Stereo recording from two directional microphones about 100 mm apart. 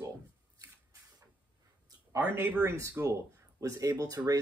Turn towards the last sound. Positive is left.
turn(degrees=-35)  # may be behind; listen again after turning